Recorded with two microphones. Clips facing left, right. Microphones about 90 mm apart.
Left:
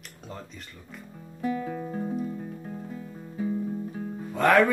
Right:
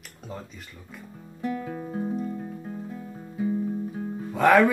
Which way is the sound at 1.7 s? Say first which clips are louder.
Right 1 dB; 15° right (ahead or behind).